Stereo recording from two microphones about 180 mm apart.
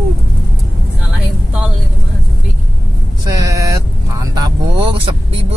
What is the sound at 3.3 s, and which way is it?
Vehicle, 20° right (ahead or behind).